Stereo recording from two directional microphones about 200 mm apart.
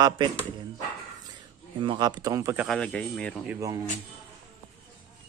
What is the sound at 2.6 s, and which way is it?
Speech, 5° left (ahead or behind).